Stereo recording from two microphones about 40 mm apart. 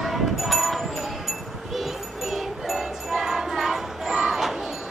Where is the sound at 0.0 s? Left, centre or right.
Centre.